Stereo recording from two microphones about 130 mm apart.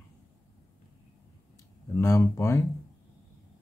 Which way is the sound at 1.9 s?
20° left (ahead or behind).